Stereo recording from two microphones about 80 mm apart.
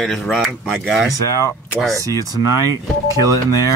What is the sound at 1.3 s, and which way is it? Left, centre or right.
Speech, left.